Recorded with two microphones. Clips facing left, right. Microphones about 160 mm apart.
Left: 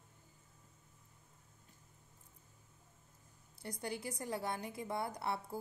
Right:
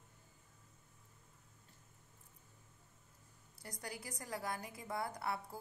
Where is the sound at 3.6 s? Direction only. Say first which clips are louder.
Left 6 dB; 25° left (ahead or behind).